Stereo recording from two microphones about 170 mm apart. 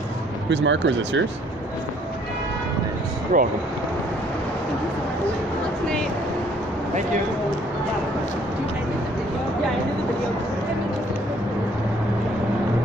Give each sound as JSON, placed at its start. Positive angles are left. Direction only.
{"t": 0.5, "sound": "speech", "side_deg": -90}
{"t": 3.3, "sound": "speech", "side_deg": -50}